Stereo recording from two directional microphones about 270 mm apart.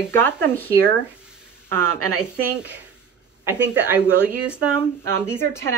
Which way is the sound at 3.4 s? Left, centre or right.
Centre.